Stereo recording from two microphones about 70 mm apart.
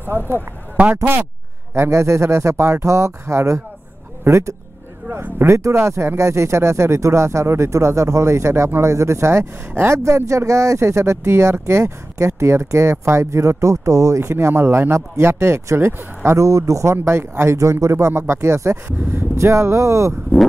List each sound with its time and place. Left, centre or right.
0.0 s speech: right
1.7 s speech: right
5.0 s speech: right
5.5 s speech: right